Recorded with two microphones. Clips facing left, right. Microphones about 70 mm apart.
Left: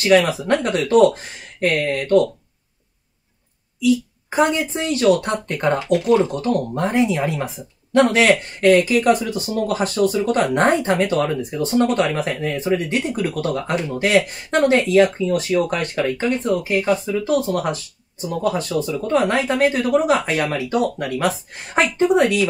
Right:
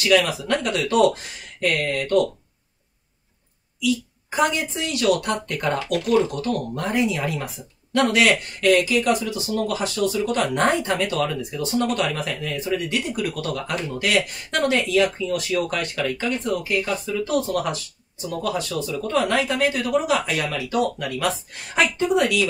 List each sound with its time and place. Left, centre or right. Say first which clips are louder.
0.0 s speech: left 4 dB; left
3.8 s speech: left 6 dB; left
17.5 s speech: left 3 dB; left